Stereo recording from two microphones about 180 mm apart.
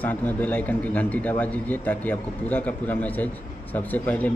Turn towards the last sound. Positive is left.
turn(degrees=10)  # may be behind; listen again after turning